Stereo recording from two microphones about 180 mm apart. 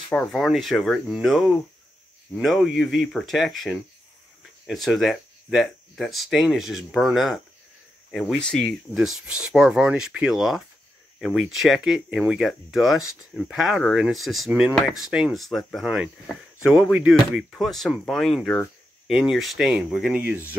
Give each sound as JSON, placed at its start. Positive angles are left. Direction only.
{"t": 0.1, "sound": "speech", "side_deg": 5}
{"t": 4.8, "sound": "speech", "side_deg": 0}